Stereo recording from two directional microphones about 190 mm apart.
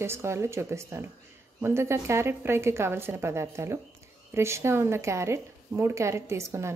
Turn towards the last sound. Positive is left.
turn(degrees=-15)  # may be behind; listen again after turning